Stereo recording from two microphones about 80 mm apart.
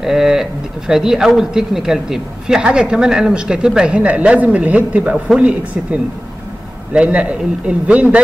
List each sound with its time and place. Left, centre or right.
0.0 s speech: centre